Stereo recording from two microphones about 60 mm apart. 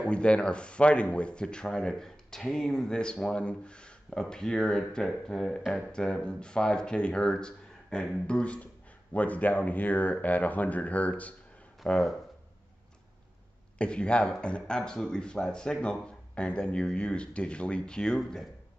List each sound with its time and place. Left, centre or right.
0.1 s speech: centre
13.7 s speech: centre